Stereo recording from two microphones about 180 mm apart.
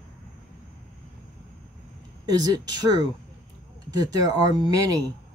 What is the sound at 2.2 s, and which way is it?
Speech, 20° right (ahead or behind).